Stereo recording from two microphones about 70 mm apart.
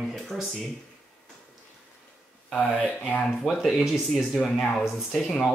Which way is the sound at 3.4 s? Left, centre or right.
Centre.